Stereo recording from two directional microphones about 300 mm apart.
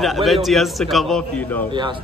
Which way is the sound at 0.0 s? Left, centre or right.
Centre.